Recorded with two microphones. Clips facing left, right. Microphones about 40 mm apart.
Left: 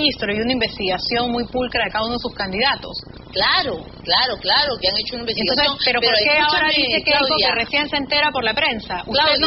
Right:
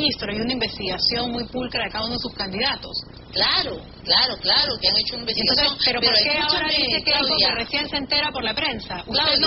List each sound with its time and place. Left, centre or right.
0.0 s a woman's voice: left
2.4 s a woman's voice: left
3.5 s a woman's voice: left